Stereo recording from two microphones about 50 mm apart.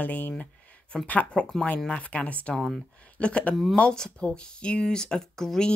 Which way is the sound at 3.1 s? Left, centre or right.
Left.